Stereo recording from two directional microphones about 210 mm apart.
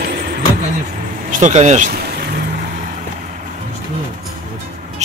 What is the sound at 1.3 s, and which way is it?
Speech, 35° right (ahead or behind).